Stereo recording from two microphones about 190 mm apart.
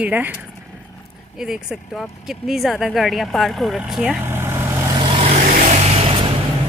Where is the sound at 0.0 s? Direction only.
10° right (ahead or behind).